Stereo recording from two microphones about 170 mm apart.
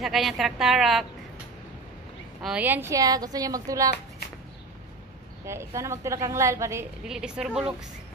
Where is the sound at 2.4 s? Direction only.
5° right (ahead or behind).